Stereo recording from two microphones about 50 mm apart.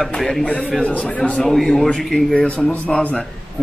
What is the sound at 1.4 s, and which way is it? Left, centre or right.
Speech, centre.